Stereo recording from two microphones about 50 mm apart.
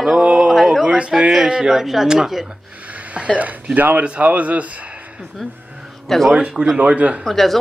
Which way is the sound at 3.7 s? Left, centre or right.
Right.